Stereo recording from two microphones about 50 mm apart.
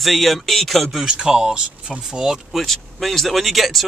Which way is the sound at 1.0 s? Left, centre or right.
Centre.